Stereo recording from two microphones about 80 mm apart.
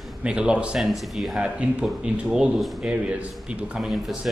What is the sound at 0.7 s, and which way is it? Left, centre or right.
Speech, centre.